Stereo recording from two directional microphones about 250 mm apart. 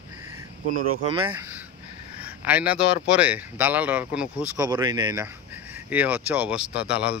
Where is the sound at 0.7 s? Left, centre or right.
Right.